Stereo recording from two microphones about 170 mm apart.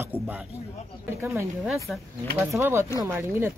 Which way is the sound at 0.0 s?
10° right (ahead or behind).